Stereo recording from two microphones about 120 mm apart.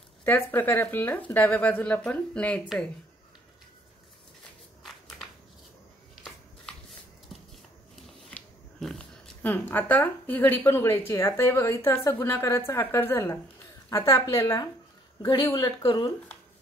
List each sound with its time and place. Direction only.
0.2 s speech: 15° left (ahead or behind)
4.8 s a sound: centre (ahead or behind)
8.3 s a woman's voice: 5° left (ahead or behind); by 16.1 s 35° left (ahead or behind)